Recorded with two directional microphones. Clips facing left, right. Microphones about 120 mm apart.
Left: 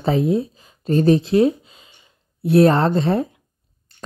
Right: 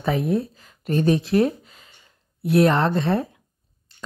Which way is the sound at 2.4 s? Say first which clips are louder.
Left 4 dB; 30° left (ahead or behind).